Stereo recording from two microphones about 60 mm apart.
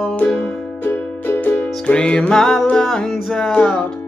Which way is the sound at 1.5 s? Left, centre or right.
Centre.